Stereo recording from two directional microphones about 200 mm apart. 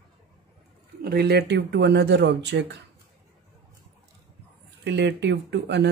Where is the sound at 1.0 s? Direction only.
50° right (ahead or behind).